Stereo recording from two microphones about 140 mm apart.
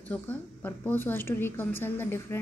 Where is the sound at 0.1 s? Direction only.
10° left (ahead or behind).